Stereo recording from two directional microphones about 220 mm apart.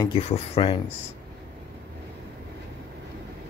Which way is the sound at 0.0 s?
25° left (ahead or behind).